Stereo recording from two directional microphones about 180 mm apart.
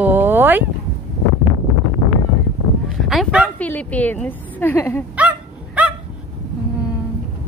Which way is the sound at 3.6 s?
10° left (ahead or behind).